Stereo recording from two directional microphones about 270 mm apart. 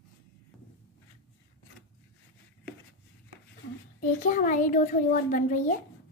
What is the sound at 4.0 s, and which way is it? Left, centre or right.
A child's voice, left.